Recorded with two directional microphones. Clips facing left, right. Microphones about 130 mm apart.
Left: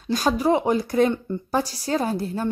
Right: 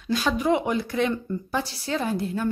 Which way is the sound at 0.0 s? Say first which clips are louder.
Left 3 dB; 40° left (ahead or behind).